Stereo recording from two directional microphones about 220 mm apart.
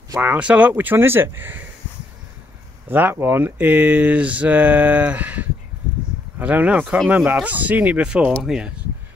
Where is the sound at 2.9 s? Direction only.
10° right (ahead or behind).